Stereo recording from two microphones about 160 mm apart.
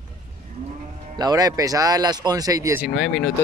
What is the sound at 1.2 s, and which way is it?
Speech, 25° right (ahead or behind).